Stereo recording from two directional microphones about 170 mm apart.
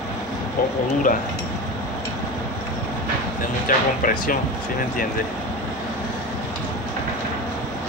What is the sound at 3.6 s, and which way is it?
Speech, 55° left (ahead or behind).